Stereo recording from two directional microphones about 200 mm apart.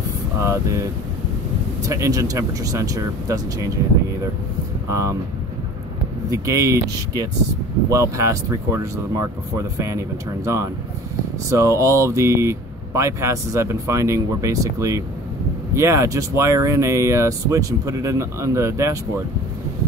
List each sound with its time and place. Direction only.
0.4 s speech: 15° right (ahead or behind)
1.9 s speech: 15° right (ahead or behind)
4.8 s speech: 15° right (ahead or behind)
6.3 s speech: 15° right (ahead or behind)